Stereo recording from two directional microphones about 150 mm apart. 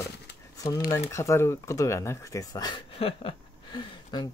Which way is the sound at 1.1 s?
20° left (ahead or behind).